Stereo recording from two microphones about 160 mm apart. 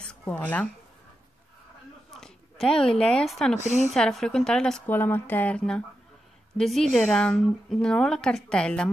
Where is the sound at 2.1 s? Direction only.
5° left (ahead or behind).